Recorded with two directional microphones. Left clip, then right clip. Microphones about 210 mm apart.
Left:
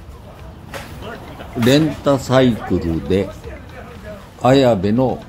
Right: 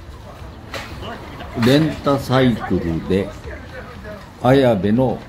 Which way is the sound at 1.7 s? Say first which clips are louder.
Left 2 dB; 15° left (ahead or behind).